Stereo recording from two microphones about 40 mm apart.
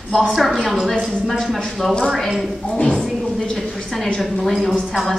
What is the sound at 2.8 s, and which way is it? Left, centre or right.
Speech, left.